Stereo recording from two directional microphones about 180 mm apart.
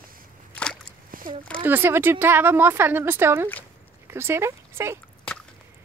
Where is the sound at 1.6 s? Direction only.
10° right (ahead or behind).